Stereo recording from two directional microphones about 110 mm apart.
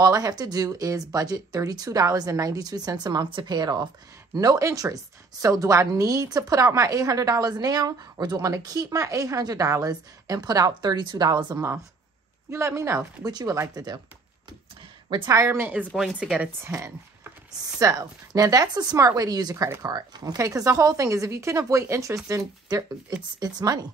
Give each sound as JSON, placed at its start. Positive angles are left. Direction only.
{"t": 0.0, "sound": "speech", "side_deg": -35}
{"t": 11.5, "sound": "speech", "side_deg": -25}
{"t": 13.3, "sound": "speech", "side_deg": -40}
{"t": 15.2, "sound": "speech", "side_deg": -25}
{"t": 16.6, "sound": "speech", "side_deg": -25}